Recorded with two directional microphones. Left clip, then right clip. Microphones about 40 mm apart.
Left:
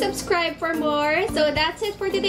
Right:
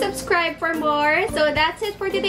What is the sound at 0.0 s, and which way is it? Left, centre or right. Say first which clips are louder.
A woman's voice: right 2 dB; centre.